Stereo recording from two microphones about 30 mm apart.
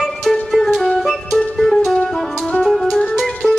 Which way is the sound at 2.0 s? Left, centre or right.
Centre.